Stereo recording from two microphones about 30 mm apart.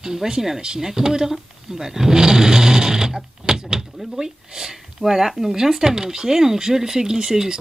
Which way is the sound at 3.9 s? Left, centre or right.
Centre.